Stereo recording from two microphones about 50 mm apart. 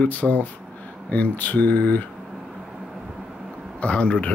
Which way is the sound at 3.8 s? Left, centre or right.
Left.